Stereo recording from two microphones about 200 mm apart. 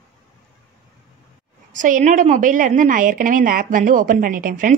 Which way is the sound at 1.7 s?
40° right (ahead or behind).